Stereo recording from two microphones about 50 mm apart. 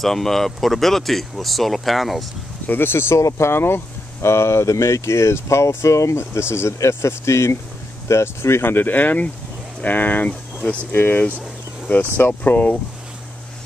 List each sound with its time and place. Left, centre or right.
0.0 s speech: centre
2.6 s speech: left
3.2 s speech: left
6.5 s speech: left